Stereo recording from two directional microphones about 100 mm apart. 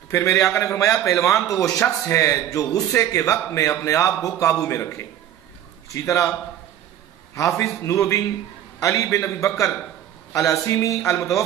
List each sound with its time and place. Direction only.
0.1 s a man's voice: 30° left (ahead or behind)
6.0 s a man's voice: 30° left (ahead or behind)
7.3 s a man's voice: 30° left (ahead or behind)